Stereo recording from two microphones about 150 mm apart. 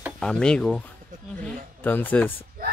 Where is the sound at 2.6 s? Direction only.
85° right.